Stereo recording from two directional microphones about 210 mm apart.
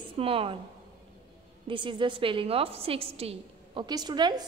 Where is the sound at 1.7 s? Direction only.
25° right (ahead or behind).